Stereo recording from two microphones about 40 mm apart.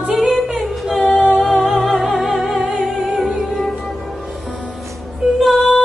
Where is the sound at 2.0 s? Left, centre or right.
Centre.